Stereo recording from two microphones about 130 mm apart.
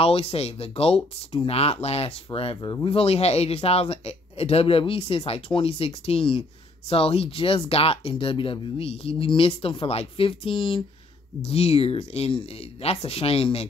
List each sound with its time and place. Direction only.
0.0 s speech: 50° left (ahead or behind)